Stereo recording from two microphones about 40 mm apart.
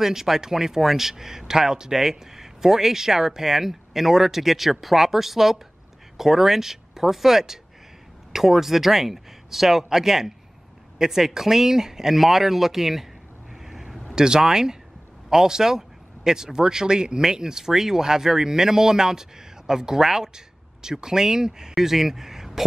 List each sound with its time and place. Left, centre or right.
0.0 s speech: centre
13.5 s vehicle: centre
14.1 s speech: centre